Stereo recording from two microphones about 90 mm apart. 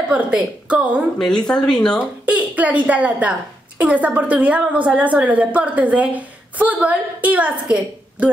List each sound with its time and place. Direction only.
0.1 s a woman's voice: 15° right (ahead or behind)
1.1 s speech: 10° left (ahead or behind)
2.2 s a woman's voice: 15° right (ahead or behind)